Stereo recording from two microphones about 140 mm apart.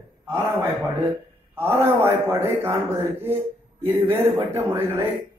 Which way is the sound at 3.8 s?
15° right (ahead or behind).